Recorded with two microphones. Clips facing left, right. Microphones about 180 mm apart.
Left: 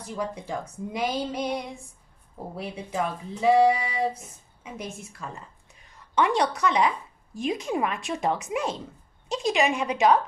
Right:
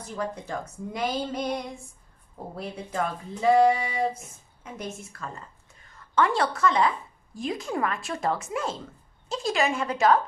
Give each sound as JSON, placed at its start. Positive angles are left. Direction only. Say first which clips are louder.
{"t": 0.1, "sound": "a woman's voice", "louder": "left 1 dB", "side_deg": 10}